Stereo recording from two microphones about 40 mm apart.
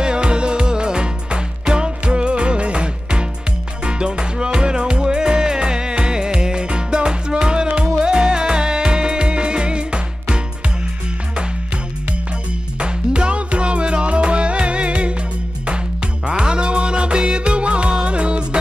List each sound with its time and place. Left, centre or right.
0.0 s music: right
12.7 s music: right
16.3 s music: right